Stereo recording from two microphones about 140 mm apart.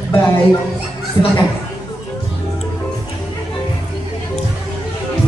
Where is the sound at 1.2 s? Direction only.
30° left (ahead or behind).